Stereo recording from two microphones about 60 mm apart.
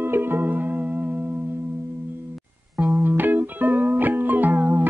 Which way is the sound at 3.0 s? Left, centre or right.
Right.